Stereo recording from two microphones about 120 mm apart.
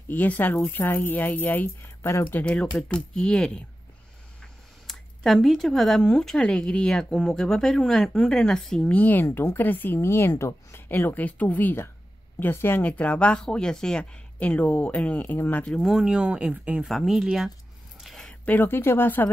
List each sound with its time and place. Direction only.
0.1 s speech: 15° left (ahead or behind)
2.4 s speech: 10° left (ahead or behind)
4.4 s a sound: centre (ahead or behind)
6.0 s speech: 5° left (ahead or behind)
15.8 s speech: centre (ahead or behind)
18.0 s a sound: 5° left (ahead or behind)
18.5 s speech: 15° left (ahead or behind)